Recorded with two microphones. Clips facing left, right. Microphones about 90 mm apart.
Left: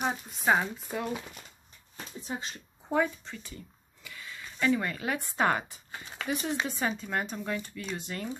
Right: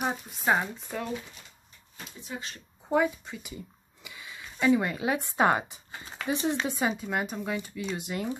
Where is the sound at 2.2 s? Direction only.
25° left (ahead or behind).